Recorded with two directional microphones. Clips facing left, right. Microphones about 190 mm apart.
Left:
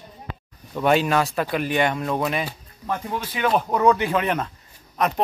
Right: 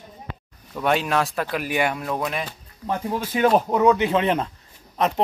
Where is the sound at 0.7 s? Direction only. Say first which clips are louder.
Left 2 dB; centre (ahead or behind).